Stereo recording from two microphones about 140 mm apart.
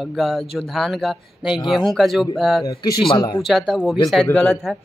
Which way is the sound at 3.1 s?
30° left (ahead or behind).